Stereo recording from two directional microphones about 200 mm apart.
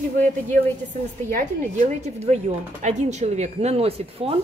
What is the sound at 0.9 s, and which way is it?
A woman's voice, 35° right (ahead or behind).